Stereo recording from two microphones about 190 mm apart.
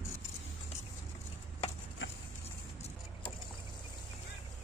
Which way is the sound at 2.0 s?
85° left.